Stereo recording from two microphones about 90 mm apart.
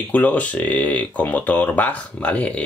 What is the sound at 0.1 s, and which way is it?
Speech, 15° left (ahead or behind).